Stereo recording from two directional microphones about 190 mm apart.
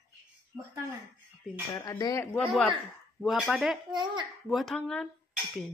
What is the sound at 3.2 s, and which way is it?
Speech, centre (ahead or behind).